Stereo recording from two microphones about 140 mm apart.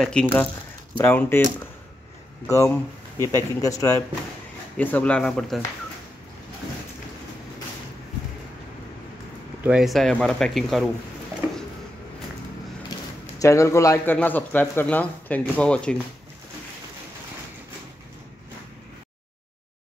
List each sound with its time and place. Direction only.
0.0 s speech: 5° left (ahead or behind)
2.4 s speech: 20° left (ahead or behind)
3.2 s speech: 25° right (ahead or behind)
3.6 s speech: 25° left (ahead or behind)
4.7 s speech: 10° left (ahead or behind)
9.6 s speech: 5° right (ahead or behind)
13.4 s speech: 20° left (ahead or behind)